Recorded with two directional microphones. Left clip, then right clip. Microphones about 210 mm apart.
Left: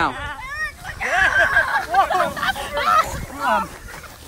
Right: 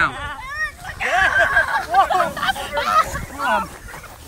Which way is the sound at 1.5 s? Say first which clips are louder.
Right 1 dB; 5° right (ahead or behind).